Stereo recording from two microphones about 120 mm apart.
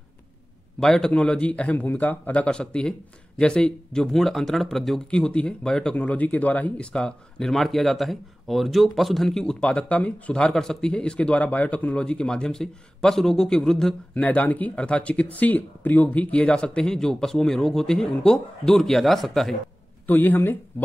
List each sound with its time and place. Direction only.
0.7 s a man's voice: 5° left (ahead or behind)
20.1 s a man's voice: 15° left (ahead or behind)